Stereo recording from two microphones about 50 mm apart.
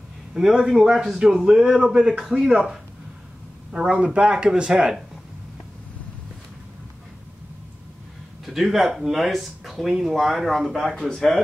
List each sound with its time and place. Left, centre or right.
0.3 s speech: centre
4.0 s speech: right
8.5 s speech: centre